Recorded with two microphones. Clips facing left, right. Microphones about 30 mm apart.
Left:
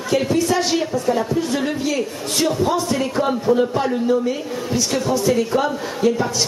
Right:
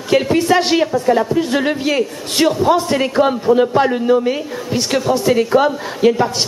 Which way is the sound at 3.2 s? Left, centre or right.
Right.